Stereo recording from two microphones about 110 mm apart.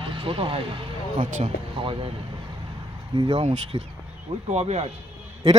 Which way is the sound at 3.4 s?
70° right (ahead or behind).